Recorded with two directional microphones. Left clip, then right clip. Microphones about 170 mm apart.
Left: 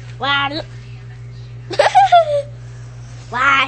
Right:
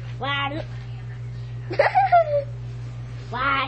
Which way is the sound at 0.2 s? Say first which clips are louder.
Left 8 dB; 40° left (ahead or behind).